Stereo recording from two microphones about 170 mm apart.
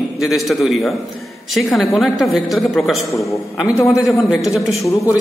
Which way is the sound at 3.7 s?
15° left (ahead or behind).